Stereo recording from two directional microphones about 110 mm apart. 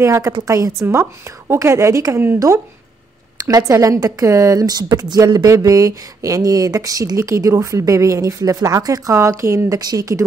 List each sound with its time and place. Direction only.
0.0 s a woman's voice: 25° right (ahead or behind)